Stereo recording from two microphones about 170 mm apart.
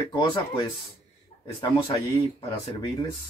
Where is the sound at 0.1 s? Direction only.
25° left (ahead or behind).